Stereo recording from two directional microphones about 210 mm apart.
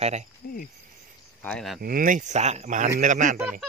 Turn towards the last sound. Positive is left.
turn(degrees=-40)  # may be behind; listen again after turning